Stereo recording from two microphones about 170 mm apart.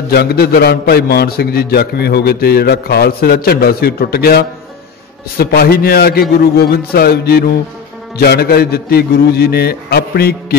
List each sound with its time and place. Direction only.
0.1 s a man's voice: 70° left (ahead or behind)
5.4 s music: 65° left (ahead or behind)
8.2 s a man's voice: 70° left (ahead or behind)